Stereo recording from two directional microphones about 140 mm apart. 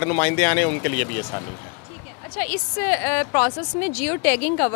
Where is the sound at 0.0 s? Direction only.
15° left (ahead or behind).